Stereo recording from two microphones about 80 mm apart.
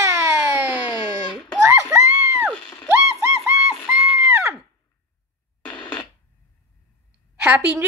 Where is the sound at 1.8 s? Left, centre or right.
Right.